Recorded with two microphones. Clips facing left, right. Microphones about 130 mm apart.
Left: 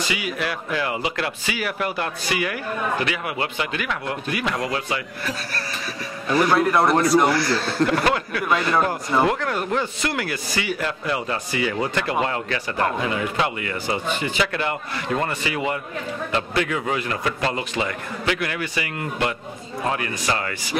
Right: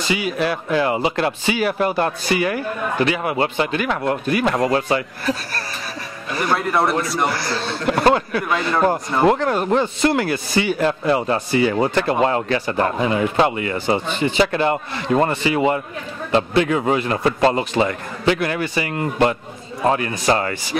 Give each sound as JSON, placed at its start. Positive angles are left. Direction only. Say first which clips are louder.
{"t": 0.1, "sound": "speech", "louder": "right 6 dB", "side_deg": -30}
{"t": 6.5, "sound": "speech", "louder": "right 1 dB", "side_deg": 0}
{"t": 7.3, "sound": "speech", "louder": "left 3 dB", "side_deg": -25}
{"t": 8.5, "sound": "speech", "louder": "left 2 dB", "side_deg": 0}
{"t": 9.3, "sound": "speech", "louder": "right 6 dB", "side_deg": -30}